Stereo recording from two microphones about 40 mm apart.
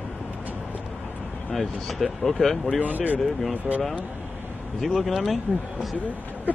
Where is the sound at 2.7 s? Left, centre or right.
Right.